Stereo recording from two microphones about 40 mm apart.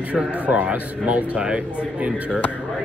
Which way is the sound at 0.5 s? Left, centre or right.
Right.